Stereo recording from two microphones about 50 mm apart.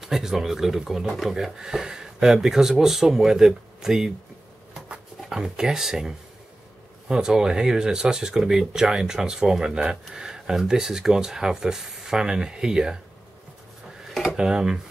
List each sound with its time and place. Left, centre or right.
0.0 s speech: centre
14.2 s speech: centre